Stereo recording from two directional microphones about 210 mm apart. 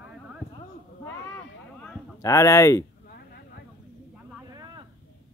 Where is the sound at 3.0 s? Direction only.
45° left (ahead or behind).